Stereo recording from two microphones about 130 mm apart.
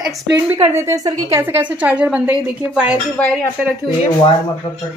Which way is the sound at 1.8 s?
10° right (ahead or behind).